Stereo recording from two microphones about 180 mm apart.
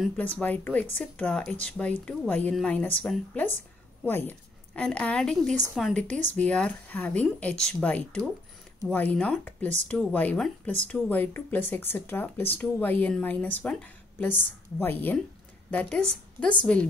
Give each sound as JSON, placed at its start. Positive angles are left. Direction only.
{"t": 0.2, "sound": "a woman's voice", "side_deg": 10}
{"t": 6.0, "sound": "speech", "side_deg": -40}
{"t": 6.3, "sound": "speech", "side_deg": 5}